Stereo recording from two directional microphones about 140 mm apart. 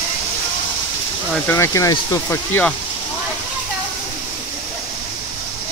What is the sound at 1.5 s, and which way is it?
Speech, 20° left (ahead or behind).